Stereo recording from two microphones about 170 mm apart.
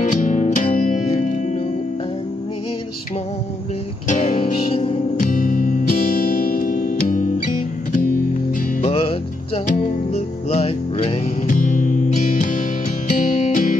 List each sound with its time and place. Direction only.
0.0 s music: 45° left (ahead or behind)
4.1 s music: 55° left (ahead or behind)
4.4 s music: 35° left (ahead or behind)
5.2 s music: 50° left (ahead or behind)
8.8 s music: 35° left (ahead or behind)